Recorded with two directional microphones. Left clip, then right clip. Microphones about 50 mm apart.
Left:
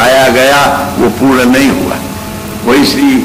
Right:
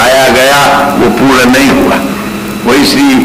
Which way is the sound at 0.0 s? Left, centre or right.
Left.